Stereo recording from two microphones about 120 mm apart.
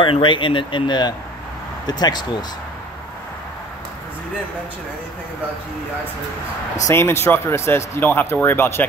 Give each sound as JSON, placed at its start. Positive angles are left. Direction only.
{"t": 0.0, "sound": "speech", "side_deg": 45}
{"t": 6.9, "sound": "speech", "side_deg": 20}